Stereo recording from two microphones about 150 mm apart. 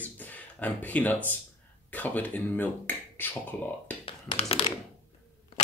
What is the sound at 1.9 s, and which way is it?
Speech, 10° left (ahead or behind).